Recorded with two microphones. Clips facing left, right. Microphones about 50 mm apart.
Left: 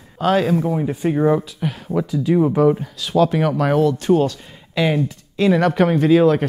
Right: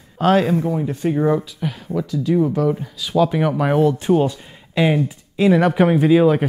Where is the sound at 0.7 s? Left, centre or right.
Centre.